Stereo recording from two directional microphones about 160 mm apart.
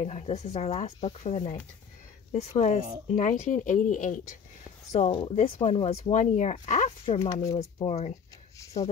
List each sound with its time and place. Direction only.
0.0 s speech: 40° left (ahead or behind)
3.1 s speech: 55° left (ahead or behind)
5.0 s speech: 40° left (ahead or behind)